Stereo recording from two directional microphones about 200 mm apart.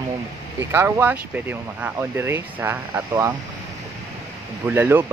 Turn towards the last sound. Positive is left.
turn(degrees=-10)  # may be behind; listen again after turning